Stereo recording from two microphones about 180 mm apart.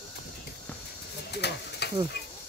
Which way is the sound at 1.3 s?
65° left (ahead or behind).